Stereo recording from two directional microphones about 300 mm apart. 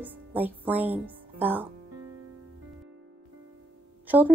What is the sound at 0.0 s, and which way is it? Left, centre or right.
Speech, centre.